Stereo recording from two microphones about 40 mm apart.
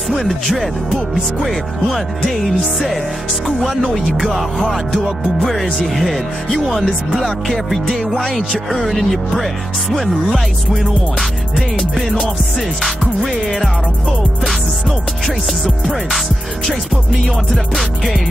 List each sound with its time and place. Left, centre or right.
0.8 s speech: centre
1.4 s music: centre
17.7 s music: centre